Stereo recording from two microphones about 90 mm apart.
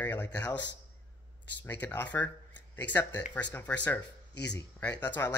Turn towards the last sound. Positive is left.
turn(degrees=20)  # may be behind; listen again after turning